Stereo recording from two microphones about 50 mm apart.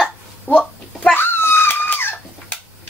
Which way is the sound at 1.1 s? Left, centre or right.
Left.